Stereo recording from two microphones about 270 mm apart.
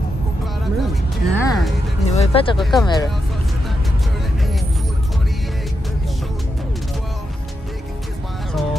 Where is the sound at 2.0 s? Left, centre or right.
Left.